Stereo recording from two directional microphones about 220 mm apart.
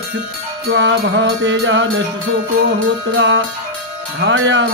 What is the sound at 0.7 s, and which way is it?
Music, 55° right (ahead or behind).